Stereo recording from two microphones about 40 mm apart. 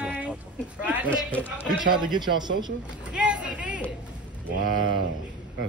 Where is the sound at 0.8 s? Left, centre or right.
Right.